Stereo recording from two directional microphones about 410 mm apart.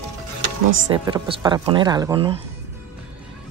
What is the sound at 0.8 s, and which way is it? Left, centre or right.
Speech, centre.